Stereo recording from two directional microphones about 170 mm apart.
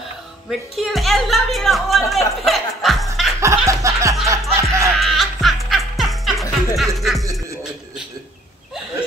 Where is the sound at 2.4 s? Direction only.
Centre (ahead or behind).